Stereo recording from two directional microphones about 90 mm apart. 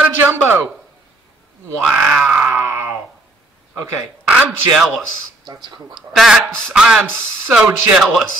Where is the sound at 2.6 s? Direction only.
25° right (ahead or behind).